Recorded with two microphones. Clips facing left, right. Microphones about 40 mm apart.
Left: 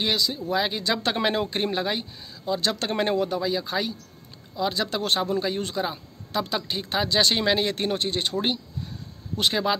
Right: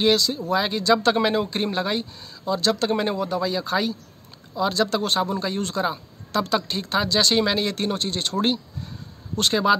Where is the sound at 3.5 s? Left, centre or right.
Centre.